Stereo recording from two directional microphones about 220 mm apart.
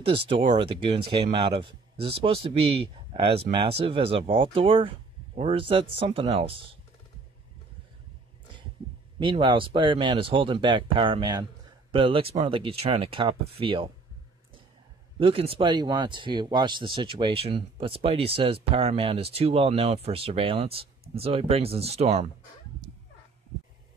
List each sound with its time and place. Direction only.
0.0 s speech: 25° right (ahead or behind)
9.2 s speech: 20° right (ahead or behind)
15.1 s speech: 25° right (ahead or behind)